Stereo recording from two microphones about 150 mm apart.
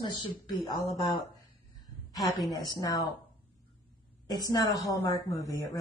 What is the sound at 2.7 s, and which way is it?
Speech, 25° left (ahead or behind).